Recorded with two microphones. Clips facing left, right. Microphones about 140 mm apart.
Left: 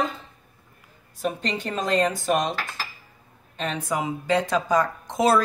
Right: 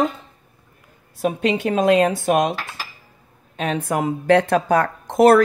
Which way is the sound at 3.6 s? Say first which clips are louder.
Right 5 dB; 55° right (ahead or behind).